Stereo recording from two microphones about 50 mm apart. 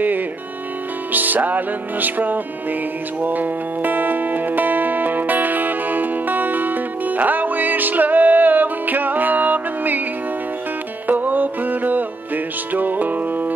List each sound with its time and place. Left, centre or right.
1.1 s music: right
11.1 s music: right